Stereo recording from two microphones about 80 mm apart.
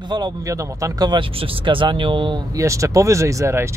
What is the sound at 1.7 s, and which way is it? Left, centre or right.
Speech, right.